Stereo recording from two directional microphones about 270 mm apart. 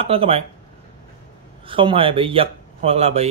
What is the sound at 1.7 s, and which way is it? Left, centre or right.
Speech, centre.